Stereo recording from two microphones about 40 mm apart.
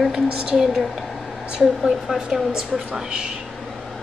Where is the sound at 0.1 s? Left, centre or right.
Centre.